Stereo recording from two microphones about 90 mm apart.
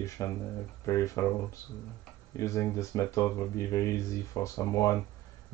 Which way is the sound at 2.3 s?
35° left (ahead or behind).